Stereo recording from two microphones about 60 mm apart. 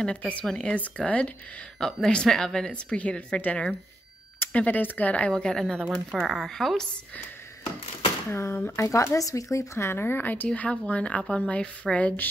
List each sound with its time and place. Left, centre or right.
0.0 s a woman's voice: centre
5.3 s a woman's voice: centre
8.3 s speech: left
8.7 s speech: left
9.8 s speech: left; by 12.1 s centre